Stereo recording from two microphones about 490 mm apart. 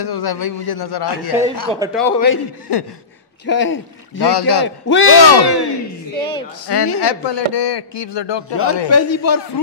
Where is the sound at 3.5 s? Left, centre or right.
Left.